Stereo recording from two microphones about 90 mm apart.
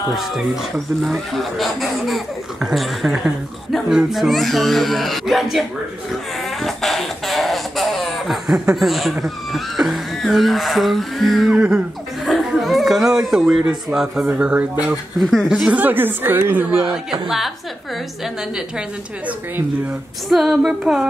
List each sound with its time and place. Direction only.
0.1 s speech: 5° right (ahead or behind)
6.6 s a sound: centre (ahead or behind)
12.3 s speech: centre (ahead or behind)
15.1 s speech: 5° right (ahead or behind)
15.7 s a woman's voice: 20° right (ahead or behind)
16.8 s speech: 5° right (ahead or behind)
20.2 s speech: centre (ahead or behind)